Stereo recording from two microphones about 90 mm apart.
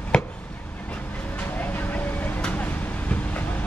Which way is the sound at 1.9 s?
15° left (ahead or behind).